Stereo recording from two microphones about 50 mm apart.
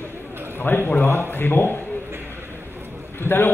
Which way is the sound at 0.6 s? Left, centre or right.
Left.